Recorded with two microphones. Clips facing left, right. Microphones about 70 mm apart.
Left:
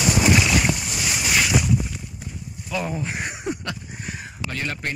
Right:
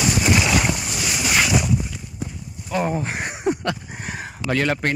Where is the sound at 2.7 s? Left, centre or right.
Right.